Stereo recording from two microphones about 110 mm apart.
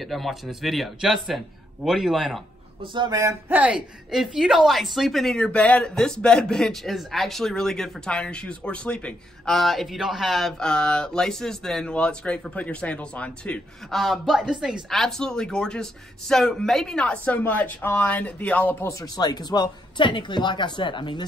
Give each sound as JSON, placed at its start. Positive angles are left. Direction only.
{"t": 0.0, "sound": "speech", "side_deg": 0}
{"t": 2.9, "sound": "a sound", "side_deg": -45}
{"t": 3.4, "sound": "speech", "side_deg": -15}
{"t": 18.9, "sound": "speech", "side_deg": 30}